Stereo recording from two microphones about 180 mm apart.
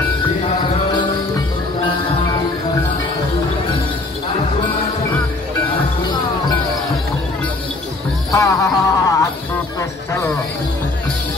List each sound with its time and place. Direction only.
8.3 s music: 15° left (ahead or behind)